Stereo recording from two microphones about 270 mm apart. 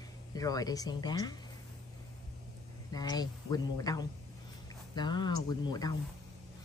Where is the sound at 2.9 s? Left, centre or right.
Centre.